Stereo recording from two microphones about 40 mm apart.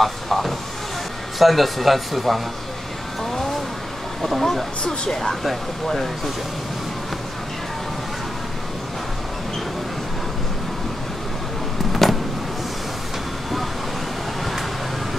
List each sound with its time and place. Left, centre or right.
0.0 s vehicle: centre
1.4 s speech: centre
4.2 s speech: centre
4.8 s speech: centre
5.3 s speech: centre
11.9 s vehicle: centre